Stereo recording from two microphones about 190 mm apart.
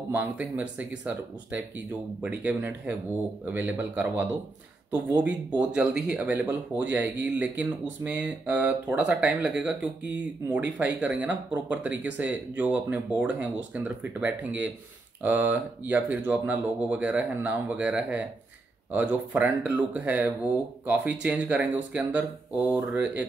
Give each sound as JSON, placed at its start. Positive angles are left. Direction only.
{"t": 0.1, "sound": "speech", "side_deg": -10}
{"t": 10.5, "sound": "speech", "side_deg": -5}